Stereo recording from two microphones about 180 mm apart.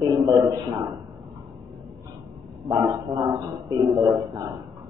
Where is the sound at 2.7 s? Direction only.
20° right (ahead or behind).